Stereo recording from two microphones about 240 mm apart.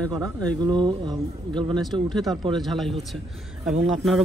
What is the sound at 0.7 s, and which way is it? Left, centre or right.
Speech, centre.